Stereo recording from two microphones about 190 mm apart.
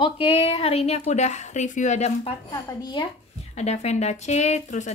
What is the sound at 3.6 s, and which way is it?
Speech, 35° left (ahead or behind).